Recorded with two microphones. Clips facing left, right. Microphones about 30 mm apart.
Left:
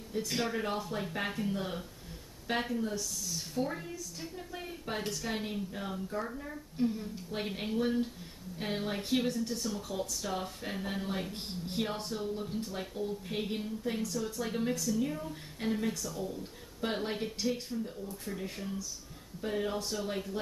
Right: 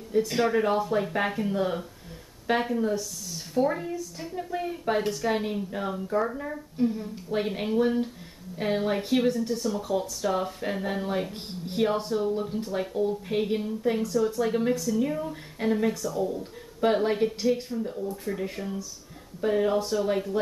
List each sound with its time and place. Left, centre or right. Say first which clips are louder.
0.1 s speech: right 10 dB; centre
3.0 s speech: right 2 dB; centre
3.6 s speech: right 10 dB; centre
6.0 s speech: right 10 dB; right
6.8 s speech: right 5 dB; centre